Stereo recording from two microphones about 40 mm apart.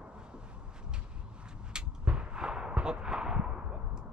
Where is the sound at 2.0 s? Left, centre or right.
Right.